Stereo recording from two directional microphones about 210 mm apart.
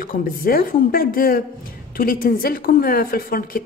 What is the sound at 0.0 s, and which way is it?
A woman's voice, 45° left (ahead or behind).